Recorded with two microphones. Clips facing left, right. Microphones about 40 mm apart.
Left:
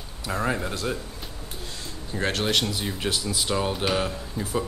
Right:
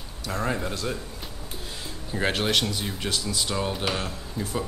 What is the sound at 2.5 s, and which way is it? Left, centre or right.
Speech, centre.